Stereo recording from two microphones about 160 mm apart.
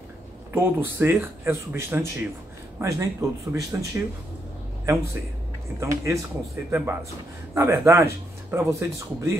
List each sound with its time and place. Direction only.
0.5 s speech: 15° right (ahead or behind)
5.8 s speech: 20° right (ahead or behind)